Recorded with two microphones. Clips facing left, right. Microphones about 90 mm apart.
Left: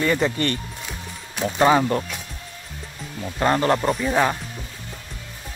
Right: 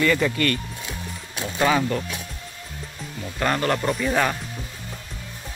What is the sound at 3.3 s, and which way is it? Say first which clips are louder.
Speech: left 3 dB; 25° left (ahead or behind).